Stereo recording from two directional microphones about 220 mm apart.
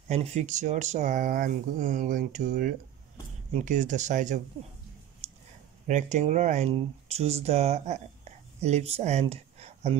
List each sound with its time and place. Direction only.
0.1 s speech: 30° right (ahead or behind)
5.2 s a sound: 30° right (ahead or behind)
5.9 s speech: 35° right (ahead or behind)